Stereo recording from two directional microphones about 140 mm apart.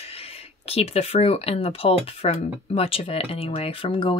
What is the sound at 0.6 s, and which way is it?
Speech, 45° left (ahead or behind).